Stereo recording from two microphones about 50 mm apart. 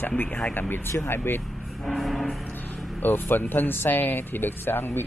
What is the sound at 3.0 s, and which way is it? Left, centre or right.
Speech, left.